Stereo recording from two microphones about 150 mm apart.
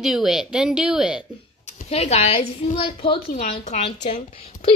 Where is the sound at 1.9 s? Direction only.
45° left (ahead or behind).